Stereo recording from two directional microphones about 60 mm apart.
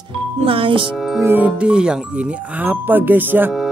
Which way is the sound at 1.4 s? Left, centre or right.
Centre.